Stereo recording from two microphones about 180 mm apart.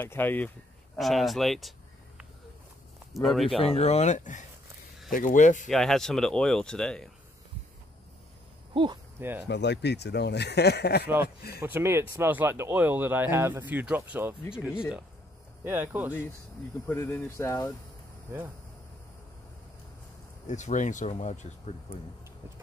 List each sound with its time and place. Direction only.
0.0 s speech: 10° left (ahead or behind)
0.9 s speech: centre (ahead or behind)
3.1 s speech: centre (ahead or behind)
3.4 s speech: 30° left (ahead or behind)
5.7 s speech: centre (ahead or behind)
9.2 s speech: 10° right (ahead or behind)
9.5 s speech: 75° left (ahead or behind)
11.6 s speech: 15° right (ahead or behind)
16.8 s speech: 15° left (ahead or behind)
20.4 s speech: 40° left (ahead or behind)